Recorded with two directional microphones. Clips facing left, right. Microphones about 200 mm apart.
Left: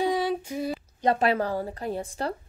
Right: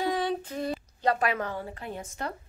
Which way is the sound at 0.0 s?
10° left (ahead or behind).